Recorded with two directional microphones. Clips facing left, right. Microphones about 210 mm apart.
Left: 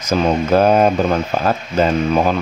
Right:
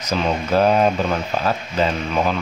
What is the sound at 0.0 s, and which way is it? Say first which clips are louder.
Speech: left 5 dB; 45° left (ahead or behind).